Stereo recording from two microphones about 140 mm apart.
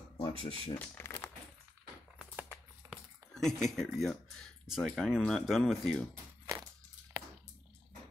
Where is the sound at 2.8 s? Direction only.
20° right (ahead or behind).